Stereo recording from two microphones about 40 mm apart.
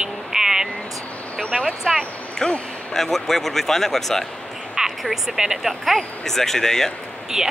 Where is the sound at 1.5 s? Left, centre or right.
Centre.